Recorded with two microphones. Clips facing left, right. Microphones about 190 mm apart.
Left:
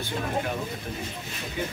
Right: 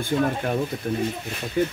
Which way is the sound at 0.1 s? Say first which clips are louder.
Right 11 dB; 55° right (ahead or behind).